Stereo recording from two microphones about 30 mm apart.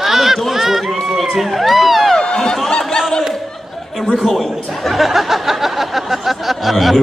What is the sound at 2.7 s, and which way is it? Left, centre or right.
Chatter, centre.